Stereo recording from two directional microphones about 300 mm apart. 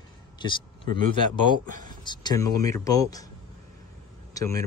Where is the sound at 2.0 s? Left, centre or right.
Centre.